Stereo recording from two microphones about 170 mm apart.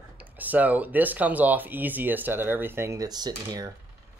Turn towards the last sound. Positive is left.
turn(degrees=-25)  # may be behind; listen again after turning